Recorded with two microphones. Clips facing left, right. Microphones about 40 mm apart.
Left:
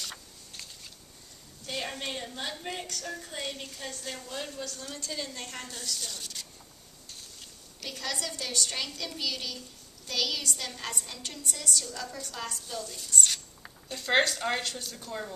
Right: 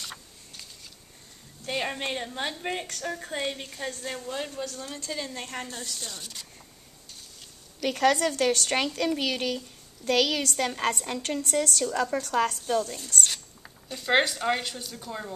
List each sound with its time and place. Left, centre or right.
1.6 s a woman's voice: right
7.9 s a woman's voice: right
13.6 s a sound: centre
14.0 s a woman's voice: centre